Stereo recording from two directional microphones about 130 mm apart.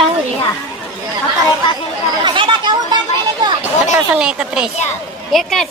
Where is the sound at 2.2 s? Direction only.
40° right (ahead or behind).